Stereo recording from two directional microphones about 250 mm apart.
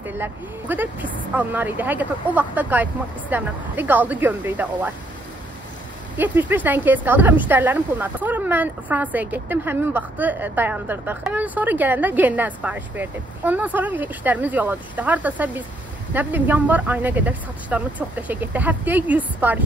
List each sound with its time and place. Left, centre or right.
0.0 s a woman's voice: centre
6.1 s a woman's voice: centre